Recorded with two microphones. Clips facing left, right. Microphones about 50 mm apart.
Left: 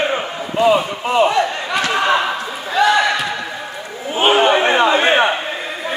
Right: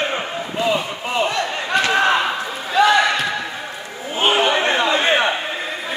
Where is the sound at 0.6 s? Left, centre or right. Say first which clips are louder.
Left 7 dB; centre.